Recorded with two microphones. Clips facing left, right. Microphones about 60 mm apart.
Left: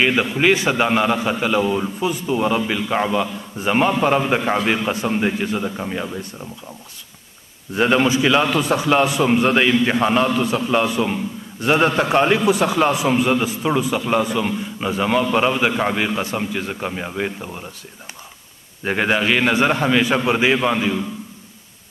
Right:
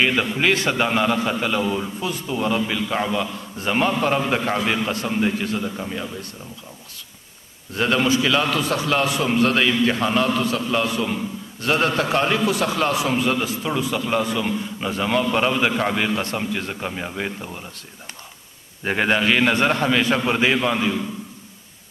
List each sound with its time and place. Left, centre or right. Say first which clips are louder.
0.0 s a man's voice: left 3 dB; centre
7.7 s a man's voice: left 3 dB; centre
18.9 s a man's voice: left 1 dB; centre